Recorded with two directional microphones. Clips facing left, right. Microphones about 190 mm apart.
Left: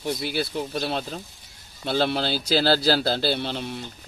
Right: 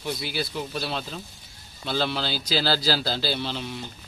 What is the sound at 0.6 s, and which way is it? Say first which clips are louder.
A man's voice: left 3 dB; 45° left (ahead or behind).